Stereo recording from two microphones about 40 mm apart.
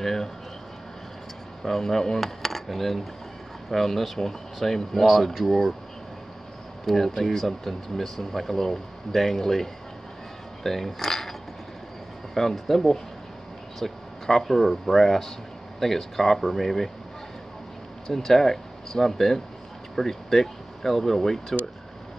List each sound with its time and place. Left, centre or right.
0.0 s speech: centre
1.6 s speech: centre
2.1 s dishes: centre
3.7 s speech: centre
6.9 s speech: centre
12.4 s speech: centre
18.0 s speech: centre